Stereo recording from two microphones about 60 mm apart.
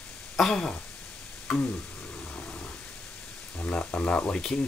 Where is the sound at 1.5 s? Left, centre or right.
Centre.